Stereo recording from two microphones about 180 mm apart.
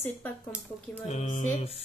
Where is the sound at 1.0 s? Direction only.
35° left (ahead or behind).